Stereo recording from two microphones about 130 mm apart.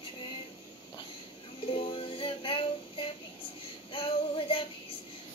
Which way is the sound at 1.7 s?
40° left (ahead or behind).